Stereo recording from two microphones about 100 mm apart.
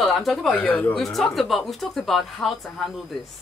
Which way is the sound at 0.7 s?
15° left (ahead or behind).